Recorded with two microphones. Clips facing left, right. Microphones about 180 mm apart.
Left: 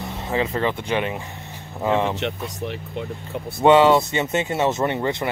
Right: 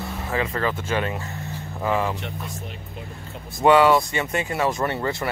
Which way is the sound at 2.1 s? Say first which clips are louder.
Left 6 dB; 75° left (ahead or behind).